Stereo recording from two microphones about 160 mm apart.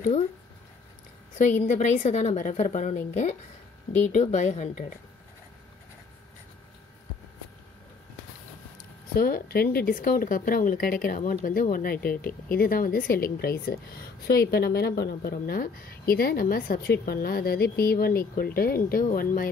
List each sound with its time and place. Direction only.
1.4 s a woman's voice: 50° left (ahead or behind)
9.1 s speech: 70° left (ahead or behind)